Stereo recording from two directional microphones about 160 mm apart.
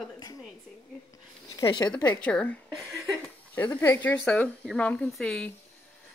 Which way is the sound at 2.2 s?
10° left (ahead or behind).